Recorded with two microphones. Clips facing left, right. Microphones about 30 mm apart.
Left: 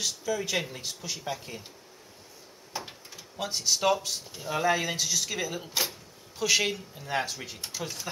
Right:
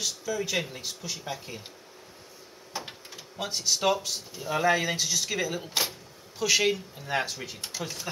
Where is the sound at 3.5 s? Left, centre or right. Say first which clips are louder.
Even; centre.